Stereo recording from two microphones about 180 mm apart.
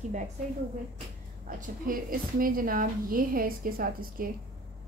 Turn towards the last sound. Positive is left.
turn(degrees=-55)  # may be behind; listen again after turning